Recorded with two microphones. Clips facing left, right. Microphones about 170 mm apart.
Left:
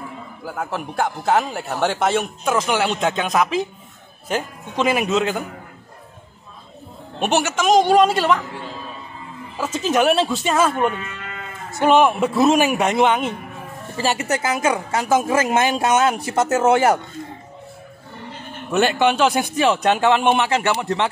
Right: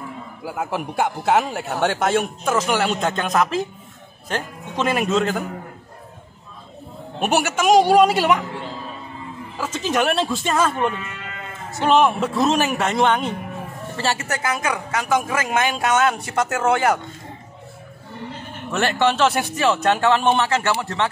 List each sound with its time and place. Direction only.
0.5 s a man's voice: 10° right (ahead or behind)
7.2 s a woman's voice: 10° right (ahead or behind)
9.6 s a man's voice: 5° left (ahead or behind); by 17.0 s 25° left (ahead or behind)
18.7 s a man's voice: 15° left (ahead or behind)